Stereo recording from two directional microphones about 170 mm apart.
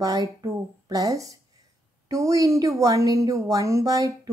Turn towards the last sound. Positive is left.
turn(degrees=-20)  # may be behind; listen again after turning